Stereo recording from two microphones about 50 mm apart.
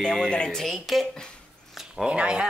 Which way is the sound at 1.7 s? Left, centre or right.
Centre.